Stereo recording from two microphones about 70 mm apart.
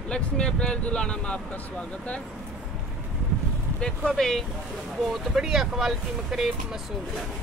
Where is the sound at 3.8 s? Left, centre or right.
Centre.